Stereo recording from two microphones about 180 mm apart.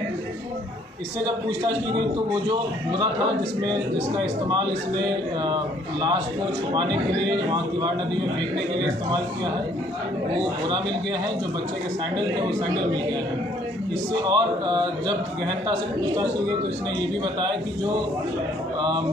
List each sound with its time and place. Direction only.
1.2 s a man's voice: 25° right (ahead or behind)
5.4 s a man's voice: 25° right (ahead or behind)
14.2 s a man's voice: 25° right (ahead or behind)